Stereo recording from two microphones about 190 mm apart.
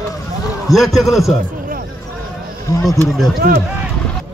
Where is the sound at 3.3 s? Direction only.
50° right (ahead or behind).